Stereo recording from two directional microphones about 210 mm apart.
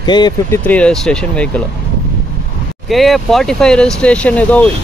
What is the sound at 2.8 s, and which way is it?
Speech, centre (ahead or behind).